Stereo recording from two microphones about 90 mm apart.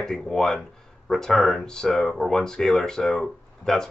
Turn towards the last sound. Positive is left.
turn(degrees=5)  # may be behind; listen again after turning